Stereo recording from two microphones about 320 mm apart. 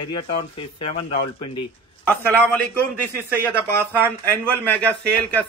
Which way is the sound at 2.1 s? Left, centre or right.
Centre.